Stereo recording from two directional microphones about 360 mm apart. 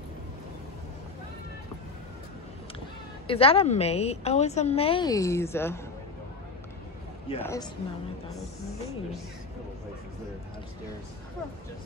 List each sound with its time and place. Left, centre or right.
3.3 s a woman's voice: centre
7.2 s a woman's voice: centre